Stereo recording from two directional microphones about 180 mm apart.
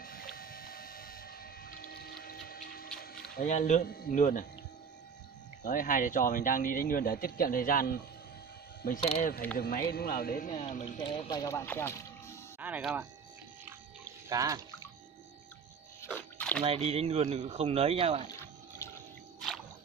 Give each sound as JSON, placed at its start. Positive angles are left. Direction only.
{"t": 0.0, "sound": "boat", "side_deg": 55}
{"t": 3.3, "sound": "speech", "side_deg": 45}
{"t": 5.6, "sound": "speech", "side_deg": 50}
{"t": 9.0, "sound": "speech", "side_deg": 30}
{"t": 9.6, "sound": "speech", "side_deg": 55}
{"t": 11.0, "sound": "speech", "side_deg": 25}
{"t": 12.5, "sound": "speech", "side_deg": -10}
{"t": 14.3, "sound": "speech", "side_deg": -20}
{"t": 16.2, "sound": "a sound", "side_deg": 10}
{"t": 16.6, "sound": "speech", "side_deg": -35}
{"t": 18.8, "sound": "water", "side_deg": 15}